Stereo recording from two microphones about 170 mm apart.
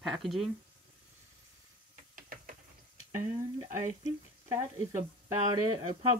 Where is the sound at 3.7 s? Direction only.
15° right (ahead or behind).